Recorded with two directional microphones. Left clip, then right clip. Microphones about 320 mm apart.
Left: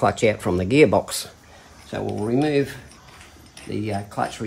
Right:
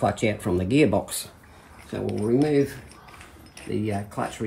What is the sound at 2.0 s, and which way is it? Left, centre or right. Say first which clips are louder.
Speech: left 1 dB; centre.